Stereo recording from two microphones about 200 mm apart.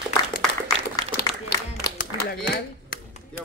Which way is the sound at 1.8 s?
50° left (ahead or behind).